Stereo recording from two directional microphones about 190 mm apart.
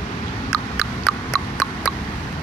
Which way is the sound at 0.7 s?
10° left (ahead or behind).